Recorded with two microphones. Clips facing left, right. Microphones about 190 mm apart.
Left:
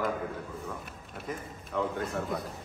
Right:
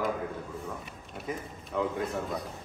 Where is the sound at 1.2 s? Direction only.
Centre (ahead or behind).